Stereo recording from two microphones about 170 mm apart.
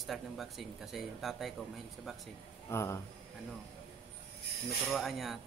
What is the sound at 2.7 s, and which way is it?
Speech, 15° left (ahead or behind).